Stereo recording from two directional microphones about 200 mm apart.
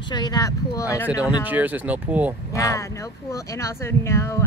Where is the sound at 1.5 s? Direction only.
10° right (ahead or behind).